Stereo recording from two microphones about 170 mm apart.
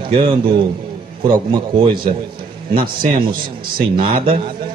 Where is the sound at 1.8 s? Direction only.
30° right (ahead or behind).